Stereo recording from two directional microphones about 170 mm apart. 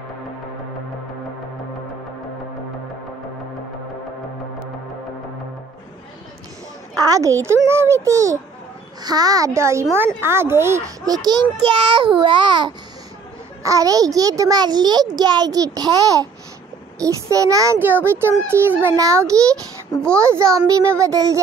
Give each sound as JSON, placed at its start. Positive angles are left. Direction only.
{"t": 7.0, "sound": "a woman's voice", "side_deg": -20}
{"t": 11.2, "sound": "a child's voice", "side_deg": -25}